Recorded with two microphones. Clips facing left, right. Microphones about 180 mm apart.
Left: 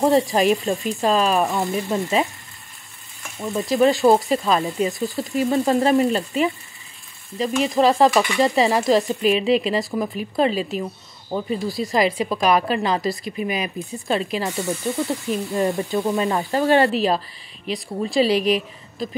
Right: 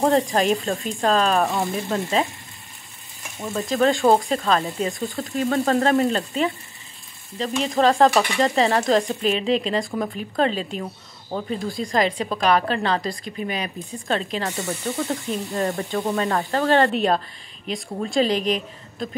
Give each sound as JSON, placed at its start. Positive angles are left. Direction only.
{"t": 0.0, "sound": "sizzle", "side_deg": 5}
{"t": 3.5, "sound": "sizzle", "side_deg": 10}
{"t": 4.6, "sound": "a woman's voice", "side_deg": 5}
{"t": 5.5, "sound": "sizzle", "side_deg": 10}
{"t": 15.9, "sound": "a woman's voice", "side_deg": 0}
{"t": 16.3, "sound": "sizzle", "side_deg": 15}
{"t": 16.9, "sound": "a woman's voice", "side_deg": 0}